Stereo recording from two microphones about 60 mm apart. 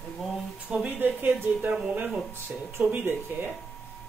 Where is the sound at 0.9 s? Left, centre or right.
Right.